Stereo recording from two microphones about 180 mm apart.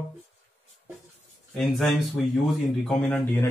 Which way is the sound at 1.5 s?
Centre (ahead or behind).